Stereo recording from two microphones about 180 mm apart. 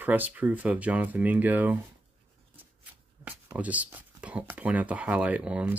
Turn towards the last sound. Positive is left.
turn(degrees=-5)  # may be behind; listen again after turning